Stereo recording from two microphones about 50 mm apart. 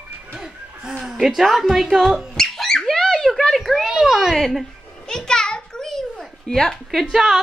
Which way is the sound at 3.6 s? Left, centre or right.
Centre.